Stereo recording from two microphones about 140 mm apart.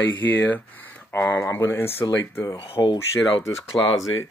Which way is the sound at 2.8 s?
30° left (ahead or behind).